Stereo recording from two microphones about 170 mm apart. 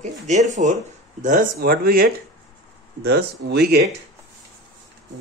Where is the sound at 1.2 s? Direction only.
50° right (ahead or behind).